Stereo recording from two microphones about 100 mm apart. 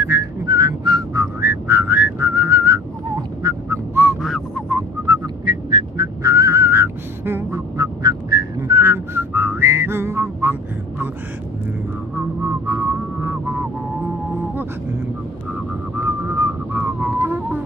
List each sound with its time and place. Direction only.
0.0 s whistling: 30° right (ahead or behind)
1.2 s whistling: 25° right (ahead or behind)
4.2 s whistling: centre (ahead or behind)
4.7 s whistling: 35° right (ahead or behind); by 11.1 s 20° right (ahead or behind)
12.4 s a sound: 35° right (ahead or behind)
13.2 s vehicle: 25° right (ahead or behind)
16.0 s whistling: 25° right (ahead or behind)